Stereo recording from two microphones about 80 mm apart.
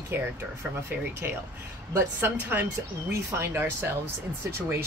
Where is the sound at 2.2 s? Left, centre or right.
Right.